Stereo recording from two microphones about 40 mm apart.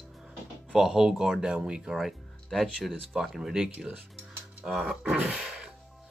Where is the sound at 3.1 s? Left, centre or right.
Centre.